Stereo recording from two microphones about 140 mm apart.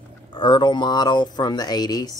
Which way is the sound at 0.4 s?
35° left (ahead or behind).